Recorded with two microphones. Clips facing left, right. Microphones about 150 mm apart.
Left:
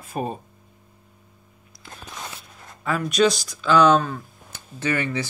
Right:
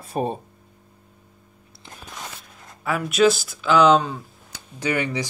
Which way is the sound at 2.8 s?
5° right (ahead or behind).